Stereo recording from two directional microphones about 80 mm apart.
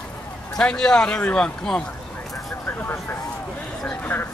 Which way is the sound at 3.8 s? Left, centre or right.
Centre.